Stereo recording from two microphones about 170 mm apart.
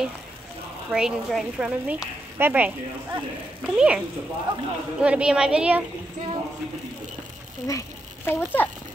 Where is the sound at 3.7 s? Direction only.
5° right (ahead or behind).